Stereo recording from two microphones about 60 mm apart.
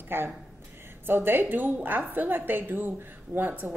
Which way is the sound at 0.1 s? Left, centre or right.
Right.